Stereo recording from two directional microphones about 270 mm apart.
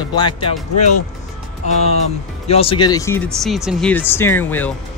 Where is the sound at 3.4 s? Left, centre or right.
Centre.